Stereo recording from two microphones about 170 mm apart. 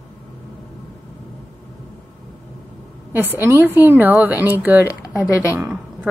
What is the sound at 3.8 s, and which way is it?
Speech, 10° right (ahead or behind).